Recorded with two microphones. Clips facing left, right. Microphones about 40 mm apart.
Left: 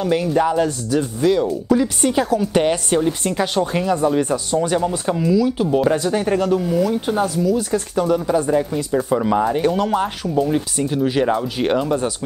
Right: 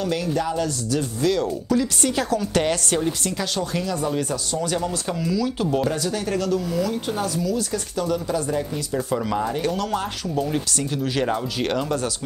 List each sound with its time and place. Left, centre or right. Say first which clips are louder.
0.0 s speech: left 6 dB; left
0.9 s speech: left 5 dB; centre
5.9 s speech: left 7 dB; left
10.3 s speech: left 5 dB; centre